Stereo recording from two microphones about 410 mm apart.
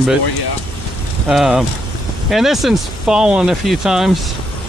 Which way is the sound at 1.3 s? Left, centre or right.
Centre.